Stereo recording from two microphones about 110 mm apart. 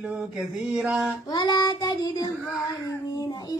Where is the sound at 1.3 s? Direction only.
40° left (ahead or behind).